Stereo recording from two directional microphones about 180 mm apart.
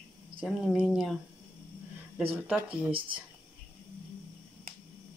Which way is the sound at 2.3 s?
10° right (ahead or behind).